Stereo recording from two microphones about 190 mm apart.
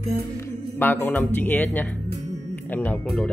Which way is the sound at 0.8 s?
10° left (ahead or behind).